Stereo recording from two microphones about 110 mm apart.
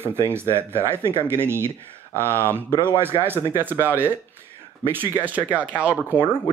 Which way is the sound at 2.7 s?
45° left (ahead or behind).